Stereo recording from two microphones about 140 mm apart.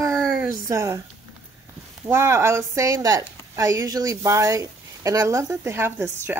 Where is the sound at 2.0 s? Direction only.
15° right (ahead or behind).